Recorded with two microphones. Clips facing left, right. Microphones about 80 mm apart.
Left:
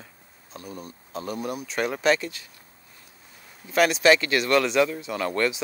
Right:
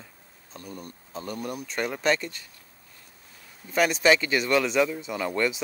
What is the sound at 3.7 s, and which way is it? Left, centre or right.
Speech, centre.